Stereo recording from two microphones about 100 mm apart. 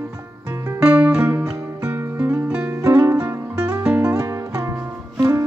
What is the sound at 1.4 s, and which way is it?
Music, 25° right (ahead or behind).